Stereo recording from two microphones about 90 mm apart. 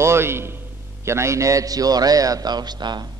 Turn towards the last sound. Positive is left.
turn(degrees=-55)  # may be behind; listen again after turning